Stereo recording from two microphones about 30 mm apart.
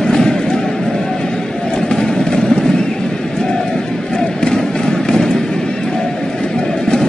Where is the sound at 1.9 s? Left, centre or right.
Centre.